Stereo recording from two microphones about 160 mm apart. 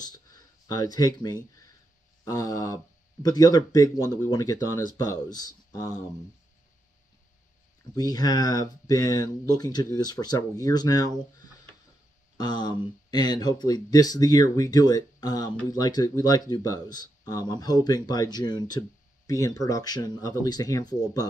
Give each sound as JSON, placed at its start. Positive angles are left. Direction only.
{"t": 0.0, "sound": "speech", "side_deg": 25}
{"t": 7.9, "sound": "speech", "side_deg": 25}
{"t": 12.4, "sound": "speech", "side_deg": 25}